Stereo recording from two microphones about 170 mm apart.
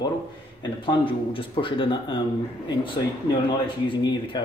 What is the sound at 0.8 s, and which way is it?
Speech, 30° left (ahead or behind).